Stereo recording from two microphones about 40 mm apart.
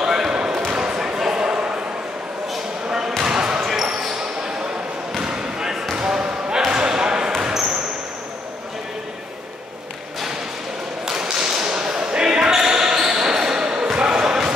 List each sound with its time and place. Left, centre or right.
0.0 s basketball bounce: centre
2.9 s basketball bounce: centre
3.7 s basketball bounce: centre
5.2 s basketball bounce: centre
11.1 s basketball bounce: centre